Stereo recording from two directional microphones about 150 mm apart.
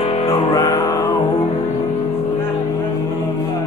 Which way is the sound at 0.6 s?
25° left (ahead or behind).